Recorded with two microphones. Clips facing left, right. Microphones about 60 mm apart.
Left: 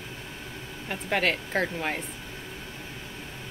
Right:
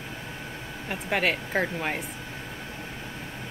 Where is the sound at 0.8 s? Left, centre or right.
Centre.